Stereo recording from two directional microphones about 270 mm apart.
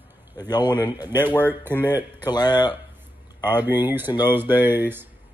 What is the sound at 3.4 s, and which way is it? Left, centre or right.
Speech, centre.